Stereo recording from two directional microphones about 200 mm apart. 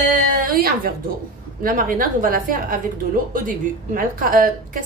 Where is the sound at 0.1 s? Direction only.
45° right (ahead or behind).